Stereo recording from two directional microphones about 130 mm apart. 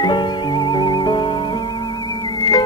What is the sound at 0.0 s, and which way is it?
Music, 35° left (ahead or behind).